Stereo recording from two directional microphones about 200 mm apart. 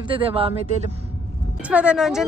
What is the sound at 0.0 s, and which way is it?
Speech, 25° right (ahead or behind).